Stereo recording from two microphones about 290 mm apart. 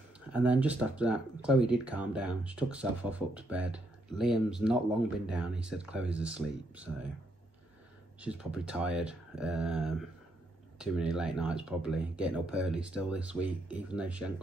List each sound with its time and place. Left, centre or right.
0.3 s speech: centre
8.2 s speech: centre